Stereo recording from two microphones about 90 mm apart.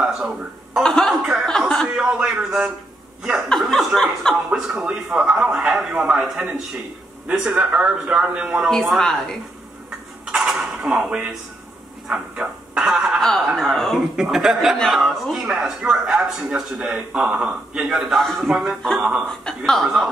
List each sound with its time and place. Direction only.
0.7 s a man's voice: 5° left (ahead or behind)
3.4 s speech: 5° left (ahead or behind)
4.5 s a man's voice: 10° right (ahead or behind)
8.6 s speech: 5° left (ahead or behind)
10.2 s speech: 5° right (ahead or behind)
14.1 s a man's voice: 5° right (ahead or behind)
19.2 s speech: 5° left (ahead or behind)